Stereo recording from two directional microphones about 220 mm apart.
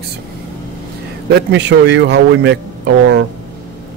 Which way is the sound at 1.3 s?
55° right (ahead or behind).